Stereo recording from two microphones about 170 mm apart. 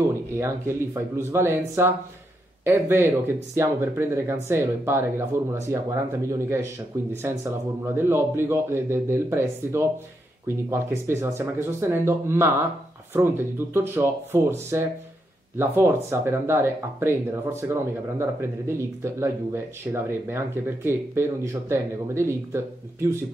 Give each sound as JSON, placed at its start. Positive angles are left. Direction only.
{"t": 0.3, "sound": "speech", "side_deg": -15}